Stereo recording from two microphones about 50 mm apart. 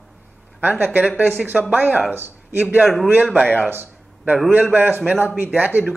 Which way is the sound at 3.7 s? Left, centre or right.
Right.